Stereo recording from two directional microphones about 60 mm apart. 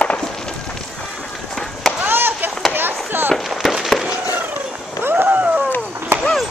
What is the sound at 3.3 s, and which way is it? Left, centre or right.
Fireworks, centre.